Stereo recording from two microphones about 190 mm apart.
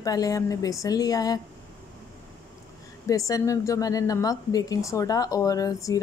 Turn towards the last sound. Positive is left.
turn(degrees=15)  # may be behind; listen again after turning